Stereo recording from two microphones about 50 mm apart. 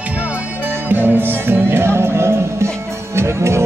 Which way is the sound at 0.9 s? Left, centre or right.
Right.